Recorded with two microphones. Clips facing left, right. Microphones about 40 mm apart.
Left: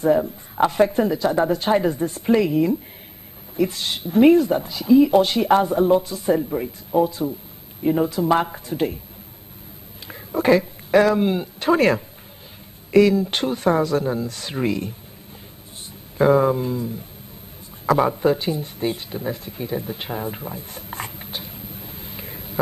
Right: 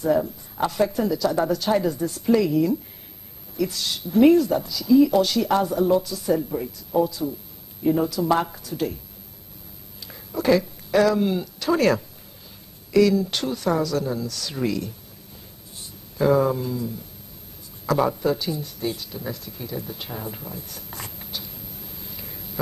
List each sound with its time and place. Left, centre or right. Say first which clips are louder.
0.6 s speech: left 5 dB; left
10.0 s speech: left 3 dB; left
16.2 s speech: left 3 dB; left